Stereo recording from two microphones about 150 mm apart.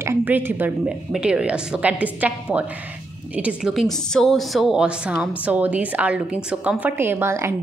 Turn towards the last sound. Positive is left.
turn(degrees=-20)  # may be behind; listen again after turning